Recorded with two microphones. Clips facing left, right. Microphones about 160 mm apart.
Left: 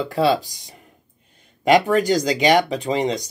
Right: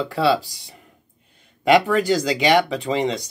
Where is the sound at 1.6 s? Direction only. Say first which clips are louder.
Left 1 dB; 40° left (ahead or behind).